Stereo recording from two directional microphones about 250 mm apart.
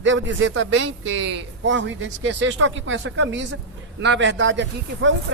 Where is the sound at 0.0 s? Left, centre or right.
Right.